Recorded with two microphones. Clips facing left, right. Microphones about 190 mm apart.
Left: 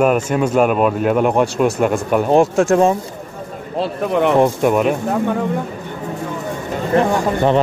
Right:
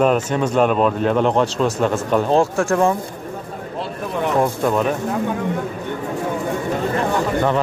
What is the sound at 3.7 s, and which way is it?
Vehicle, 65° left (ahead or behind).